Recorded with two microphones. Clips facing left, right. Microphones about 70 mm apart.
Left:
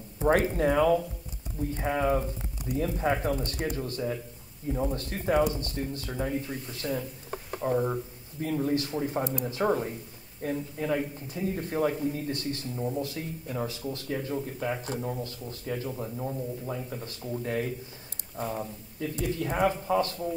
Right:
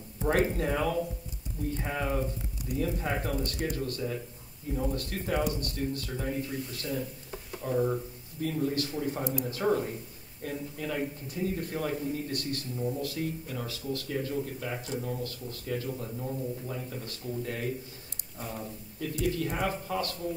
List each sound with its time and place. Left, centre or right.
0.2 s speech: left